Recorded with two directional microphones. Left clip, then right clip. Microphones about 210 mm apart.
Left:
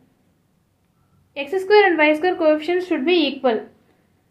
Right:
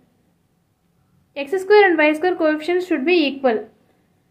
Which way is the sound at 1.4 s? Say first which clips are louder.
Right 1 dB; 15° right (ahead or behind).